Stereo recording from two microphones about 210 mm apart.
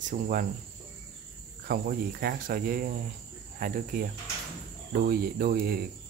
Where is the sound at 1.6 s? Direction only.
45° right (ahead or behind).